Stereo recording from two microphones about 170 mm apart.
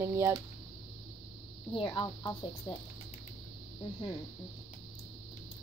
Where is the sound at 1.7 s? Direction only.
30° left (ahead or behind).